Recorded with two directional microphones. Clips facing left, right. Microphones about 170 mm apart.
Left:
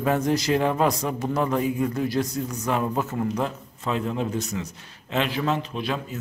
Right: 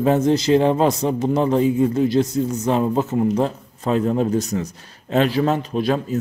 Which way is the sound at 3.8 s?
40° right (ahead or behind).